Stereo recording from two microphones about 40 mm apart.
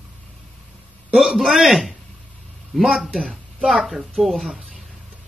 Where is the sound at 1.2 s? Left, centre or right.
Centre.